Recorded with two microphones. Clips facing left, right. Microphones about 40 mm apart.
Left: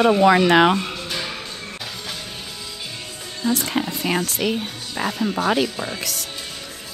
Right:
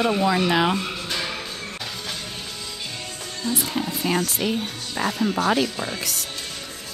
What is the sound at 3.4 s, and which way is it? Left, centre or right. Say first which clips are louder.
Speech: left 4 dB; centre.